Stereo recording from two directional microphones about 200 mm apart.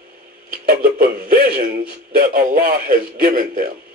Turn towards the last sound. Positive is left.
turn(degrees=-45)  # may be behind; listen again after turning